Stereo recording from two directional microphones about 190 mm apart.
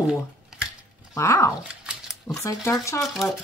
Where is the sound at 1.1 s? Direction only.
15° left (ahead or behind).